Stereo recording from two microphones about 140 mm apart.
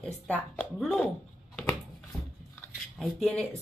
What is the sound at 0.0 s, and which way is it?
Speech, 5° left (ahead or behind).